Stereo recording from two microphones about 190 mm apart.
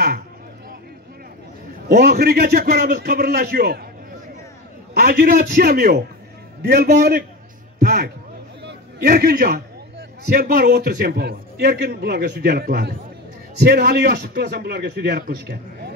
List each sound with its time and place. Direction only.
1.9 s a man's voice: 55° right (ahead or behind)
4.9 s a man's voice: 55° right (ahead or behind)
7.8 s a sound: 50° right (ahead or behind)
8.6 s a man's voice: 55° right (ahead or behind)